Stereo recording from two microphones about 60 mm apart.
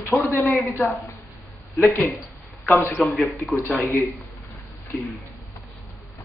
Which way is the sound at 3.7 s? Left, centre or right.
Left.